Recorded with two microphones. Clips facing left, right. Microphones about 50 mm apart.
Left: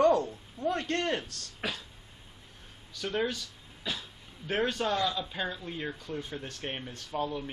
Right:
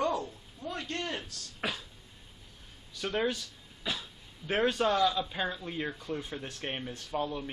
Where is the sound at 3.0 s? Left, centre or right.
Centre.